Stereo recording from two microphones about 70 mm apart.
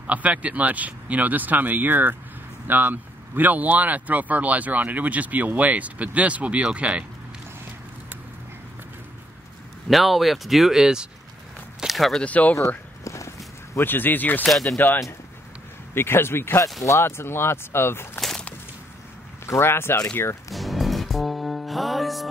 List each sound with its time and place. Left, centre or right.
0.0 s speech: right
9.8 s speech: centre
12.2 s speech: left
12.5 s a sound: left
13.7 s speech: left
14.5 s speech: centre
15.9 s speech: left
19.4 s speech: left
20.5 s music: centre